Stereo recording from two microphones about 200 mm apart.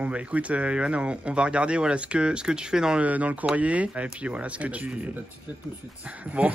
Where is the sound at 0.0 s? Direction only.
5° right (ahead or behind).